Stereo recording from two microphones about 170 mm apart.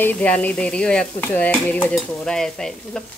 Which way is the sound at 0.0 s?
10° left (ahead or behind).